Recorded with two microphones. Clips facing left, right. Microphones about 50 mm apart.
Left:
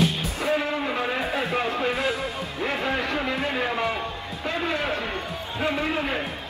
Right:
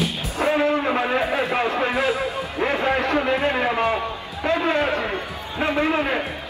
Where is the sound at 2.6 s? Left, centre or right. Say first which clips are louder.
Right 5 dB; right.